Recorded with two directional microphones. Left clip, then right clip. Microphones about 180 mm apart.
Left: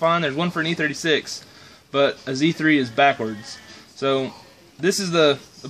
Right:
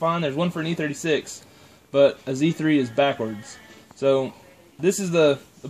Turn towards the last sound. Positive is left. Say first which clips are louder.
# left 1 dB
turn(degrees=-30)  # may be behind; listen again after turning